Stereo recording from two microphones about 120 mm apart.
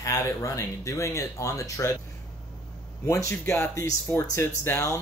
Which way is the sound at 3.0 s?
25° left (ahead or behind).